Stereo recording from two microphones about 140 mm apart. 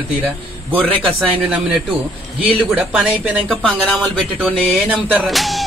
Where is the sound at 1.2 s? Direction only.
Centre (ahead or behind).